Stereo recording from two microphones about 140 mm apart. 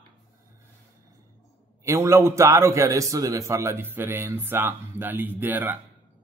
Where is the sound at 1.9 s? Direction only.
20° right (ahead or behind).